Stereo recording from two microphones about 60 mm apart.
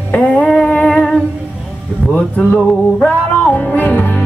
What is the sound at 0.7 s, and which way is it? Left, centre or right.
Humming, centre.